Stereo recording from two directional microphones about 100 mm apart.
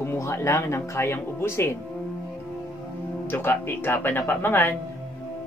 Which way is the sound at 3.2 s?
20° left (ahead or behind).